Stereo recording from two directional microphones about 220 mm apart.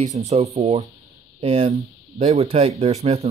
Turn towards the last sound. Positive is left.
turn(degrees=-30)  # may be behind; listen again after turning